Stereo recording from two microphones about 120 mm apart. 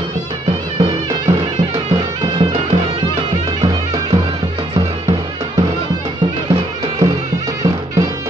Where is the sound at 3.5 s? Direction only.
35° right (ahead or behind).